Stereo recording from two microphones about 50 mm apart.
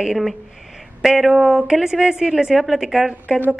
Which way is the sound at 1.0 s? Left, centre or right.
Centre.